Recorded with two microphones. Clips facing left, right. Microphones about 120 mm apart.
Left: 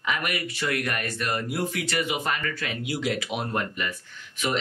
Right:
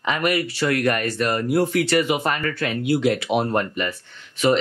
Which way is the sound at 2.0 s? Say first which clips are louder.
Right 6 dB; 60° right (ahead or behind).